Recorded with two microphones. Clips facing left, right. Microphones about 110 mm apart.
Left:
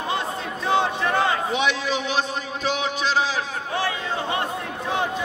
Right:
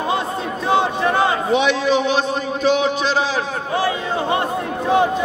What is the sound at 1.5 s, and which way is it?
A man's voice, 70° right (ahead or behind).